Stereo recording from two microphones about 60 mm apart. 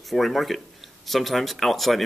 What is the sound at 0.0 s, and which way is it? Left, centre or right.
A man's voice, centre.